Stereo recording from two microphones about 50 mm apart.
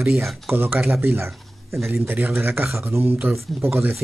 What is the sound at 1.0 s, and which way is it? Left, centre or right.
Speech, right.